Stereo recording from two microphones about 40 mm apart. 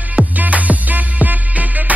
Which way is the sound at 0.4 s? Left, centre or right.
Right.